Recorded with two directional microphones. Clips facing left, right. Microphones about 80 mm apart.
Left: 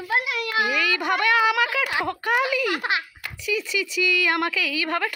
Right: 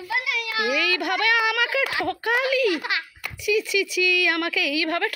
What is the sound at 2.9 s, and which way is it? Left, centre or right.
Speech, left.